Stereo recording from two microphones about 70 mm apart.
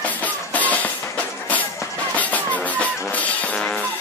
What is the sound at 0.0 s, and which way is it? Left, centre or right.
Music, left.